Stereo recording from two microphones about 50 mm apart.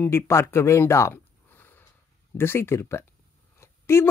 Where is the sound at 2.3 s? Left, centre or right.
Left.